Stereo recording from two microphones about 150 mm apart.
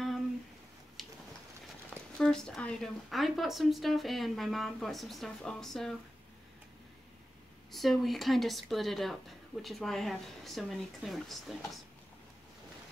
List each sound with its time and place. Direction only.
1.0 s a sound: centre (ahead or behind)
2.1 s speech: 5° left (ahead or behind)
7.7 s speech: centre (ahead or behind)